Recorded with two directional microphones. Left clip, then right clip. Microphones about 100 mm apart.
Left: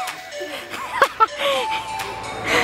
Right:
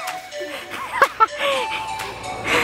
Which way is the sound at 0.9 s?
5° left (ahead or behind).